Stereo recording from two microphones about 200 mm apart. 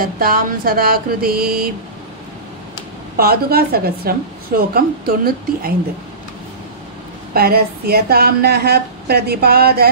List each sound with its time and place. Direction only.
0.0 s speech: 45° right (ahead or behind)
3.2 s speech: 50° right (ahead or behind)
7.3 s speech: 50° right (ahead or behind)